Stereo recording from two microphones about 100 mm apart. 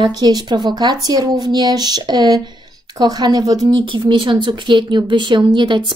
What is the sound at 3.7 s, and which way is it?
A woman's voice, 55° right (ahead or behind).